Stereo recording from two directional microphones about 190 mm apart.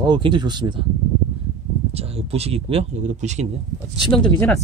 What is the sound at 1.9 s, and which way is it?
Speech, 30° right (ahead or behind).